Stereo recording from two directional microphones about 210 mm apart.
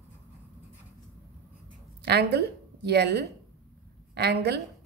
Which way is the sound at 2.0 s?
50° right (ahead or behind).